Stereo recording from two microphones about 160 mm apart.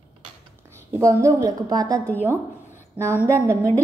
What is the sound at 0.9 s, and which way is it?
A woman's voice, 20° right (ahead or behind).